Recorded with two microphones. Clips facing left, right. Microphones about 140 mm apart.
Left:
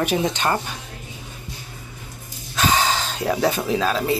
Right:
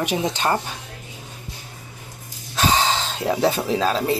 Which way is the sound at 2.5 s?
30° right (ahead or behind).